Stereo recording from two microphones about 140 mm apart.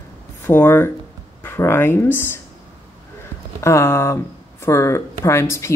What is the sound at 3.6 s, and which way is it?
Speech, 20° left (ahead or behind).